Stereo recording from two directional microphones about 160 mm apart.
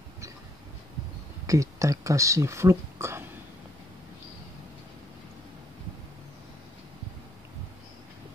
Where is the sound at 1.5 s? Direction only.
20° right (ahead or behind).